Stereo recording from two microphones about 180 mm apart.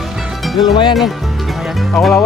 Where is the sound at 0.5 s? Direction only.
25° left (ahead or behind).